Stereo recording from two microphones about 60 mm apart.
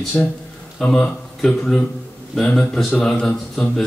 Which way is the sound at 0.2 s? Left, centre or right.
Left.